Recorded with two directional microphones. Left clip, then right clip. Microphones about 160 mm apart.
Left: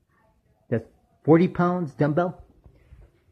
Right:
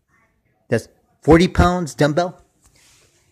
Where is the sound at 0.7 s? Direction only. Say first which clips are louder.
Right 7 dB; 35° right (ahead or behind).